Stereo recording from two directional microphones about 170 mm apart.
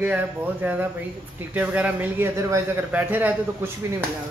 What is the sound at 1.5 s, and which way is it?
A man's voice, 10° right (ahead or behind).